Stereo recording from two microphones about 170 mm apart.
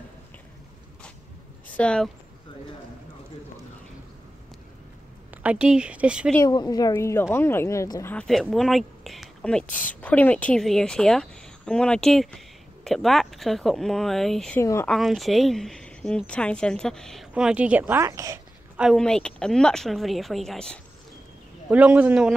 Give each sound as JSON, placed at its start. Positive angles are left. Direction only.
{"t": 1.7, "sound": "speech", "side_deg": 5}
{"t": 5.4, "sound": "speech", "side_deg": -5}
{"t": 6.4, "sound": "speech", "side_deg": 25}
{"t": 14.6, "sound": "speech", "side_deg": 15}
{"t": 14.9, "sound": "speech", "side_deg": 0}
{"t": 18.8, "sound": "speech", "side_deg": 0}
{"t": 21.6, "sound": "speech", "side_deg": -10}